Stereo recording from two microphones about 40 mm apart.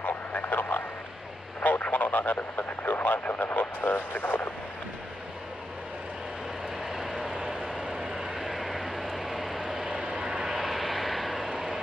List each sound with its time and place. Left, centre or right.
0.0 s vehicle: left
1.6 s radio: left
6.8 s vehicle: centre
7.9 s vehicle: centre
8.5 s vehicle: centre
9.8 s vehicle: right